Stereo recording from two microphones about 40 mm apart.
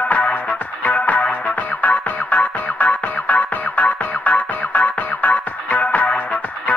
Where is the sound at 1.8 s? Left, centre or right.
Left.